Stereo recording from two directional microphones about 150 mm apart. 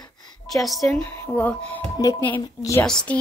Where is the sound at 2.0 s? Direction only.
25° left (ahead or behind).